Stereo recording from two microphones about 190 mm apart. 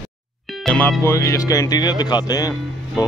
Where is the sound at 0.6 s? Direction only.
5° left (ahead or behind).